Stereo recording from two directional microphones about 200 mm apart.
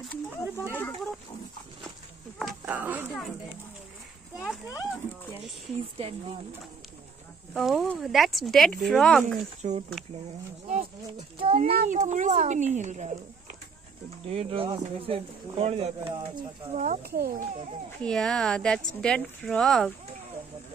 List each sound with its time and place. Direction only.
0.0 s speech: 10° left (ahead or behind)
2.3 s a sound: 5° right (ahead or behind)
7.5 s speech: centre (ahead or behind)
9.6 s speech: 35° right (ahead or behind)
10.7 s a sound: 35° right (ahead or behind)
11.4 s speech: 30° right (ahead or behind)
11.7 s speech: 40° right (ahead or behind)
14.2 s speech: 30° right (ahead or behind)
17.0 s a child's voice: 50° right (ahead or behind)
18.0 s speech: 5° left (ahead or behind)